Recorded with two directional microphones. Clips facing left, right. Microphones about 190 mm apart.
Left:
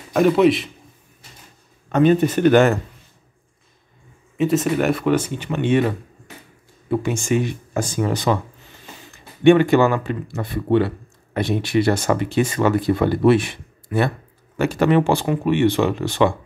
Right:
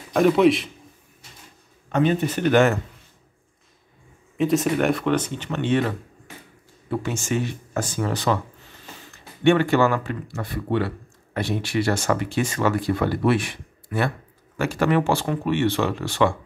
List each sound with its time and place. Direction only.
0.1 s a man's voice: centre (ahead or behind)
1.9 s speech: 50° left (ahead or behind)
4.4 s speech: centre (ahead or behind); by 16.3 s 20° left (ahead or behind)